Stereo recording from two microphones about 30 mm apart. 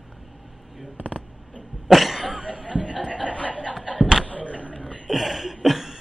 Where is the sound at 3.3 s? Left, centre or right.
Left.